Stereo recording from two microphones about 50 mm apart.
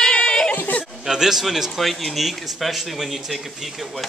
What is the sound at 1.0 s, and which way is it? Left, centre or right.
Speech, centre.